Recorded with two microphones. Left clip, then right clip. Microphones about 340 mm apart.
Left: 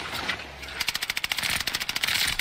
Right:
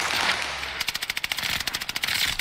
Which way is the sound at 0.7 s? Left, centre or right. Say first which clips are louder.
Left 5 dB; centre.